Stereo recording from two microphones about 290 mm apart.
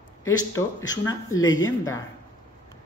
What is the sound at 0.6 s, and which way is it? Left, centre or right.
Speech, centre.